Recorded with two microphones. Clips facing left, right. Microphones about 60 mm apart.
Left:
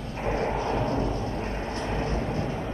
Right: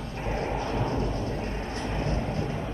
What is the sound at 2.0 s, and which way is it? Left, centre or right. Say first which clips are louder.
Vehicle: right 1 dB; left.